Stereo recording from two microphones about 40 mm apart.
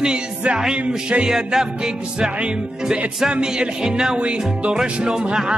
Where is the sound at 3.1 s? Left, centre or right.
Centre.